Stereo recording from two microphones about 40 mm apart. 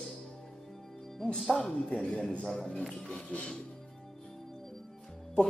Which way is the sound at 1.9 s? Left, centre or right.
Left.